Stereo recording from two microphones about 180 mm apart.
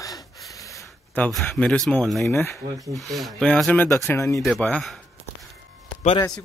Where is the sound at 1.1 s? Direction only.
5° left (ahead or behind).